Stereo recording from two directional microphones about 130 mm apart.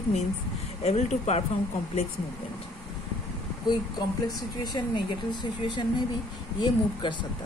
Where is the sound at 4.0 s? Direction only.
30° left (ahead or behind).